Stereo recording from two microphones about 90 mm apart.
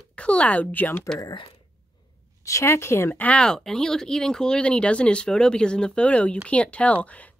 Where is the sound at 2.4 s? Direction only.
30° left (ahead or behind); by 7.2 s 15° left (ahead or behind).